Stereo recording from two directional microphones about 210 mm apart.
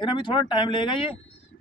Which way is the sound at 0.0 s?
20° left (ahead or behind).